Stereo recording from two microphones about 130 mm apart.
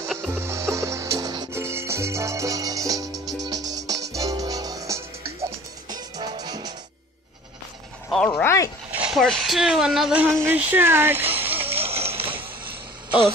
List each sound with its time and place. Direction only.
0.3 s music: 20° right (ahead or behind)
1.5 s music: 20° right (ahead or behind)
8.1 s speech: 5° left (ahead or behind)
8.9 s a sound: 10° right (ahead or behind)
9.2 s speech: centre (ahead or behind)
10.2 s speech: 15° right (ahead or behind)
11.3 s a sound: 15° right (ahead or behind)
11.8 s music: 50° right (ahead or behind)